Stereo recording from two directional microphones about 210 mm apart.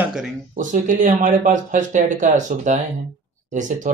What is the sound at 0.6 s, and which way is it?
Speech, 40° right (ahead or behind).